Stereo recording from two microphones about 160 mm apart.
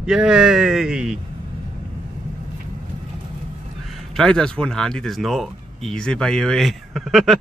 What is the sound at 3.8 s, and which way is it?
Speech, centre (ahead or behind).